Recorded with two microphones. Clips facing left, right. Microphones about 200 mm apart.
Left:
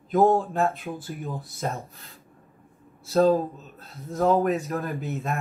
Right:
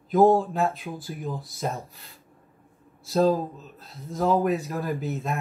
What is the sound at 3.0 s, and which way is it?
Speech, centre (ahead or behind).